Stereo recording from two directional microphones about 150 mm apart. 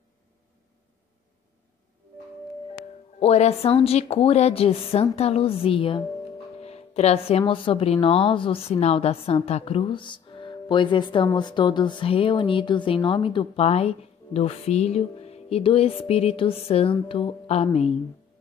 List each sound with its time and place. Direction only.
3.2 s a woman's voice: 45° left (ahead or behind)